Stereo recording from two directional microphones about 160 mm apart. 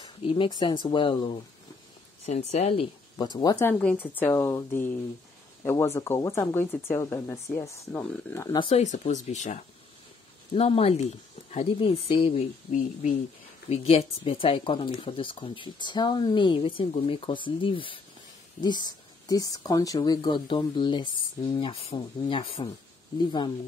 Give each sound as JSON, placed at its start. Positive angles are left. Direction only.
{"t": 0.0, "sound": "speech", "side_deg": 35}
{"t": 2.2, "sound": "speech", "side_deg": 45}
{"t": 3.3, "sound": "speech", "side_deg": 20}
{"t": 3.7, "sound": "speech", "side_deg": 10}
{"t": 8.5, "sound": "speech", "side_deg": 35}
{"t": 8.8, "sound": "speech", "side_deg": 45}
{"t": 13.7, "sound": "speech", "side_deg": 40}